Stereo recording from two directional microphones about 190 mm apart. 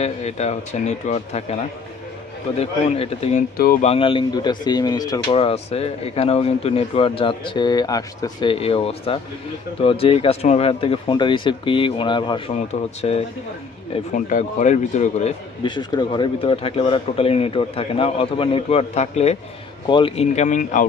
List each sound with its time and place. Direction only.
0.0 s speech: 35° left (ahead or behind)
2.6 s speech: 30° left (ahead or behind)
3.5 s speech: 50° left (ahead or behind)
3.8 s speech: 30° left (ahead or behind)
15.6 s speech: 25° left (ahead or behind); by 20.8 s 40° left (ahead or behind)